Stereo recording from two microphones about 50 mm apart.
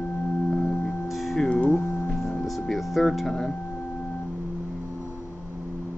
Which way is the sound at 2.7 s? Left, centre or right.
Centre.